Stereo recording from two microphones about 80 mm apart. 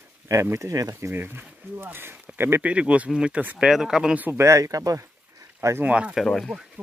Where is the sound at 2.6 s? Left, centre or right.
Centre.